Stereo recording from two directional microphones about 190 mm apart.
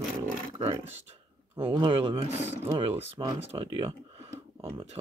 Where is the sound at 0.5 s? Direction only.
25° right (ahead or behind).